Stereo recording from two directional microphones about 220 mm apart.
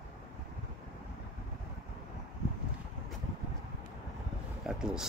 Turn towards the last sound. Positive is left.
turn(degrees=0)  # may be behind; listen again after turning